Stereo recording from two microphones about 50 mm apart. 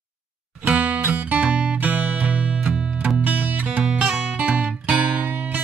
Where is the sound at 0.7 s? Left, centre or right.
Right.